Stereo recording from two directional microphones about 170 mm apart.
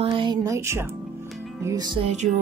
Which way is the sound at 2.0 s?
40° right (ahead or behind).